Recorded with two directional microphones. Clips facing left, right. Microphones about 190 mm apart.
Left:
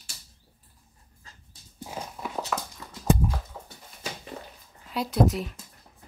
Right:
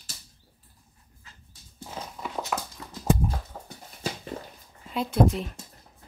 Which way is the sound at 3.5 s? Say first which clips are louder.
Right 1 dB; 45° right (ahead or behind).